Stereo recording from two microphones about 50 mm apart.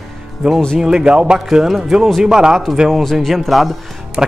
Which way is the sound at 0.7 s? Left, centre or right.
Centre.